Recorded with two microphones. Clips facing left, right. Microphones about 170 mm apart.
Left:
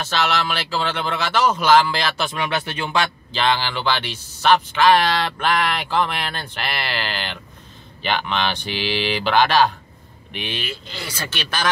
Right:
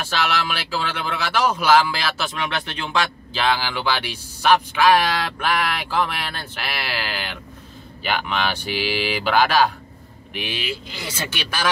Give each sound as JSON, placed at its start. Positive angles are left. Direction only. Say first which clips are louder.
{"t": 0.0, "sound": "speech", "louder": "left 2 dB", "side_deg": -10}
{"t": 11.1, "sound": "speech", "louder": "right 3 dB", "side_deg": -25}
{"t": 11.3, "sound": "speech", "louder": "left 1 dB", "side_deg": -10}